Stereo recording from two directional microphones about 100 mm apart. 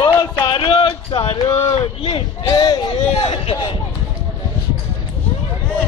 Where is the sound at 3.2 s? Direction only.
75° left (ahead or behind).